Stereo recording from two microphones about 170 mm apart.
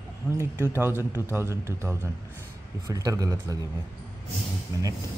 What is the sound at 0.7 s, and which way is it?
A man's voice, 15° right (ahead or behind).